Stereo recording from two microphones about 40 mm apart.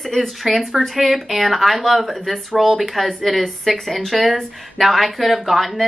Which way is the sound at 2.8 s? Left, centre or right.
Centre.